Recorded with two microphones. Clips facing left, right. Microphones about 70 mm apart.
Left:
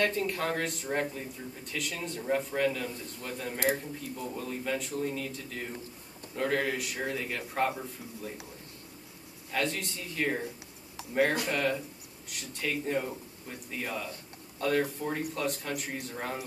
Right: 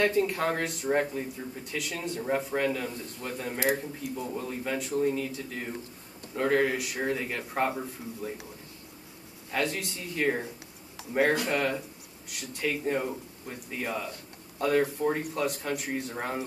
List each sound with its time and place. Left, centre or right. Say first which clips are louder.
0.0 s speech: right 4 dB; centre
9.5 s speech: right 2 dB; centre